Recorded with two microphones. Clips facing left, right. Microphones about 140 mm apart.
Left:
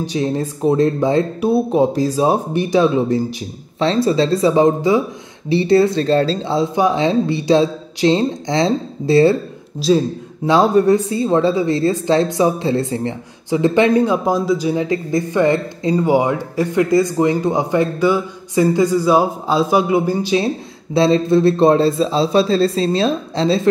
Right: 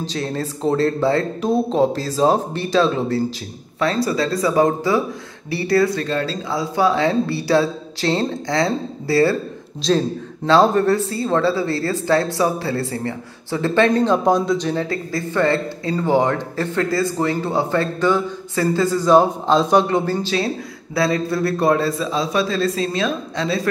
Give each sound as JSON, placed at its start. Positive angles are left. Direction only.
{"t": 0.0, "sound": "speech", "side_deg": 15}
{"t": 9.8, "sound": "speech", "side_deg": 5}